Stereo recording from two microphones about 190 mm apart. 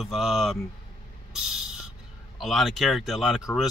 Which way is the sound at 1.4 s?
5° right (ahead or behind).